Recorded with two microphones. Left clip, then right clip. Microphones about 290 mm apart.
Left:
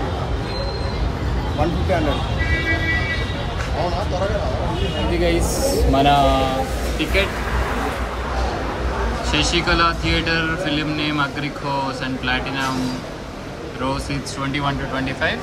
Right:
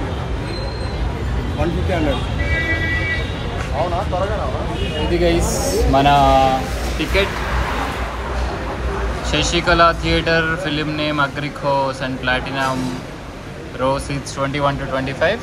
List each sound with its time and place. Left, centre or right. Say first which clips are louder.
5.1 s speech: right 4 dB; centre
9.3 s speech: right 3 dB; centre
14.4 s speech: right 5 dB; centre